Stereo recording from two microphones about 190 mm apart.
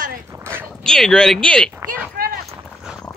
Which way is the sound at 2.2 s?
50° right (ahead or behind).